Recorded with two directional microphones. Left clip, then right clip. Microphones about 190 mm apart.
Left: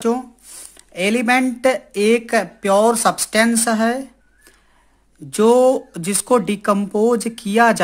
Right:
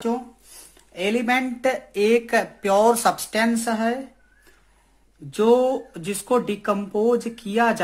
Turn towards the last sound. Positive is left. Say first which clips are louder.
# left 6 dB
turn(degrees=40)  # may be behind; listen again after turning